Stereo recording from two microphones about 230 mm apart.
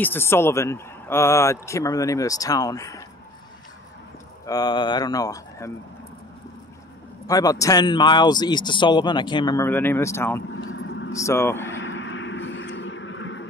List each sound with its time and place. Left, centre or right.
0.0 s speech: centre
4.5 s speech: centre
7.2 s speech: centre
10.6 s vehicle: left
11.1 s speech: centre
11.6 s vehicle: left